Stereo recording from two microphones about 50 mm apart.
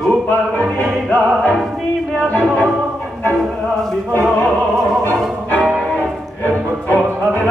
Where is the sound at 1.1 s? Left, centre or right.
Left.